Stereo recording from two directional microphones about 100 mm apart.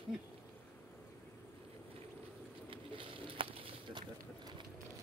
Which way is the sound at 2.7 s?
60° right (ahead or behind).